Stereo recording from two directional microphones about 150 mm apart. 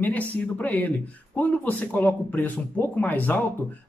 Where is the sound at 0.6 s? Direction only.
10° left (ahead or behind).